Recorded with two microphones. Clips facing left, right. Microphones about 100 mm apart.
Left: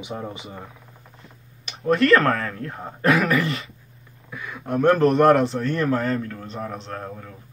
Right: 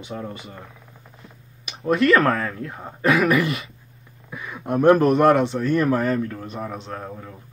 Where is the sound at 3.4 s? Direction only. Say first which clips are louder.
Right 1 dB; 30° left (ahead or behind).